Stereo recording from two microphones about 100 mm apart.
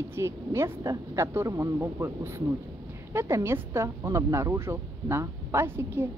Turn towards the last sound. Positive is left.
turn(degrees=-25)  # may be behind; listen again after turning